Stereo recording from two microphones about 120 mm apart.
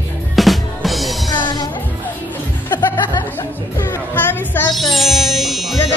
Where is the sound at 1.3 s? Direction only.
35° left (ahead or behind).